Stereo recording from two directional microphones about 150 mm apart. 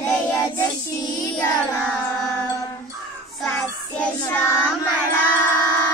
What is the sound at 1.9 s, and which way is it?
Music, 5° left (ahead or behind).